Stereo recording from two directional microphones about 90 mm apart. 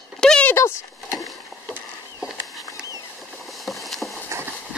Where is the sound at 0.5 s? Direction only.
30° left (ahead or behind).